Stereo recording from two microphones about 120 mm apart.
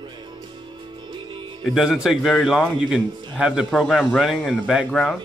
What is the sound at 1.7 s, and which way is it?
A man's voice, 5° right (ahead or behind).